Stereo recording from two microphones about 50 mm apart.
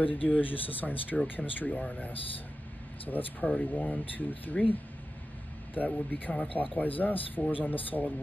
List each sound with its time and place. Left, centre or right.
0.0 s speech: left
5.8 s speech: left